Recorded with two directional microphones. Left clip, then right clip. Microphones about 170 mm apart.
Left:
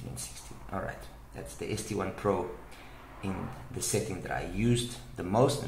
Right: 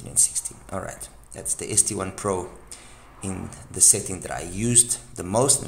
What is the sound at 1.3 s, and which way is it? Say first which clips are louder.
Speech: right 10 dB; 55° right (ahead or behind).